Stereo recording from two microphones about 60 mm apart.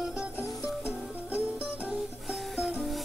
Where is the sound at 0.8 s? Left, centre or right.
Right.